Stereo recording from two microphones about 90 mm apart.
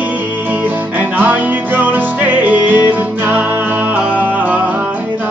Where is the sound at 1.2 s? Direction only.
20° right (ahead or behind).